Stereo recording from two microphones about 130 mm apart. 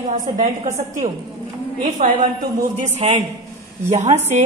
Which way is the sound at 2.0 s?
90° right.